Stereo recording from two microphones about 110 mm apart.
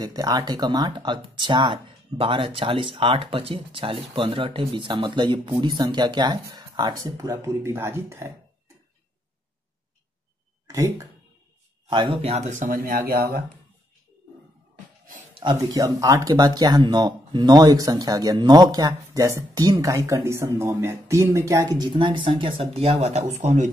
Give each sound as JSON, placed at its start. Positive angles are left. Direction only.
{"t": 0.0, "sound": "speech", "side_deg": -35}
{"t": 10.7, "sound": "speech", "side_deg": -30}
{"t": 12.1, "sound": "speech", "side_deg": -70}
{"t": 15.7, "sound": "speech", "side_deg": -35}